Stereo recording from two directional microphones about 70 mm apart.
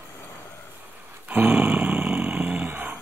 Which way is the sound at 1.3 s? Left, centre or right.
Right.